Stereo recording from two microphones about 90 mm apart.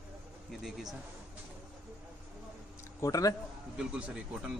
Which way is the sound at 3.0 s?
40° left (ahead or behind).